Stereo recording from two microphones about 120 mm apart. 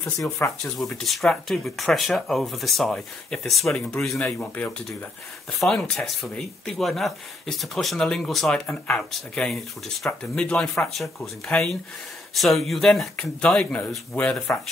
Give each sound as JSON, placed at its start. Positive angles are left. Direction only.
{"t": 0.4, "sound": "speech", "side_deg": 20}
{"t": 1.0, "sound": "speech", "side_deg": 0}